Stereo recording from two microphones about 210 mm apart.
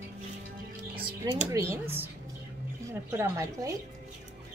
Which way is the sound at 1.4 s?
10° right (ahead or behind).